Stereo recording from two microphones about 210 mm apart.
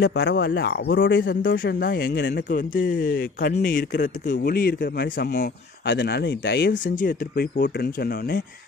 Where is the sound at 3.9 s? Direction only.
40° left (ahead or behind); by 6.9 s 55° left (ahead or behind).